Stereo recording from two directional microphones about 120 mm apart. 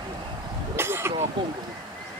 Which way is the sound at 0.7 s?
20° right (ahead or behind).